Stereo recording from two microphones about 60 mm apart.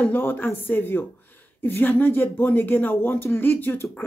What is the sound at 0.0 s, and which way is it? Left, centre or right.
Speech, left.